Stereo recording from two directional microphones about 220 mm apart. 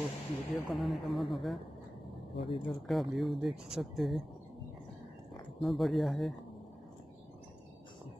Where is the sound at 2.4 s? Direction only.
25° left (ahead or behind).